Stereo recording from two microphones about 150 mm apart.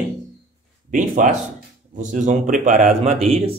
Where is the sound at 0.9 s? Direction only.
60° right (ahead or behind).